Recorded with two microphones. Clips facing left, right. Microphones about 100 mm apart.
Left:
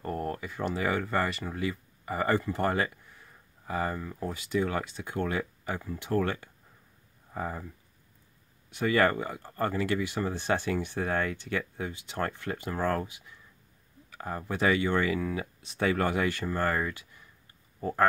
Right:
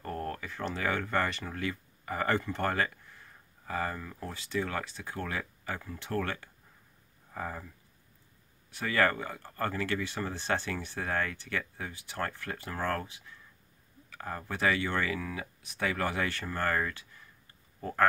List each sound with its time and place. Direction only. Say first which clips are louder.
0.0 s speech: left 3 dB; 20° left (ahead or behind)
8.6 s speech: left 3 dB; 20° left (ahead or behind)